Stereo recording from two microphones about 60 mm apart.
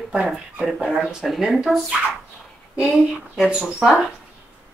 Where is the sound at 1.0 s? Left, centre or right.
Centre.